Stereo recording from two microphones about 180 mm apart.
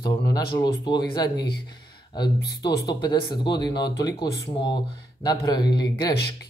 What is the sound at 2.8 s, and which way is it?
Speech, 25° left (ahead or behind).